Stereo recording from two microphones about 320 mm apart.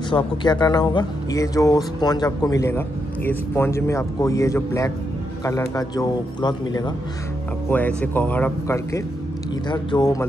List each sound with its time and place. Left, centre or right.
0.1 s speech: centre